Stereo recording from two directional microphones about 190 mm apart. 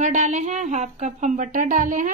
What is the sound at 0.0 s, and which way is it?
Speech, 40° right (ahead or behind).